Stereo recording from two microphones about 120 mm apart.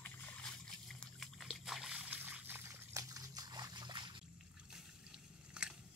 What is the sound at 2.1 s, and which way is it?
Trickle, 15° right (ahead or behind).